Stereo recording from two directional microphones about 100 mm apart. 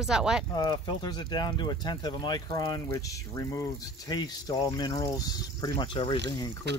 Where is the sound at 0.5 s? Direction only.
45° left (ahead or behind).